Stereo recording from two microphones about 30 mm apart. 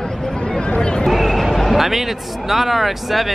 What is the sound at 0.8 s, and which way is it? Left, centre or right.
Speech, left.